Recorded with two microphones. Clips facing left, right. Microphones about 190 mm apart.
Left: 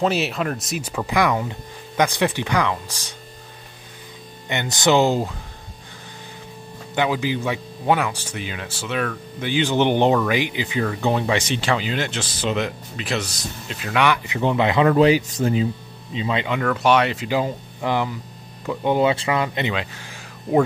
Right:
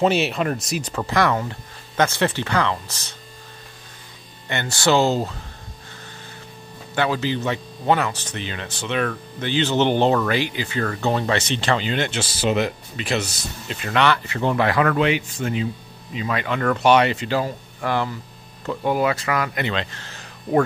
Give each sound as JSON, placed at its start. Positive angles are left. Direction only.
{"t": 0.0, "sound": "speech", "side_deg": 0}
{"t": 4.5, "sound": "speech", "side_deg": 15}
{"t": 7.0, "sound": "speech", "side_deg": 15}
{"t": 14.0, "sound": "speech", "side_deg": 15}
{"t": 15.0, "sound": "speech", "side_deg": 35}
{"t": 16.6, "sound": "speech", "side_deg": 0}
{"t": 17.3, "sound": "speech", "side_deg": 15}
{"t": 19.7, "sound": "speech", "side_deg": 10}